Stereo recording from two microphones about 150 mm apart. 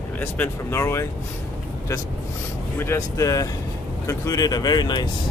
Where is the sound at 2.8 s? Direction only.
20° left (ahead or behind).